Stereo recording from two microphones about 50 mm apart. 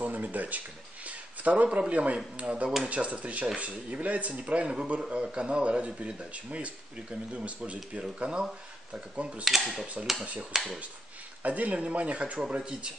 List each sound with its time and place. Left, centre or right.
0.0 s speech: right
9.4 s speech: centre
11.4 s speech: right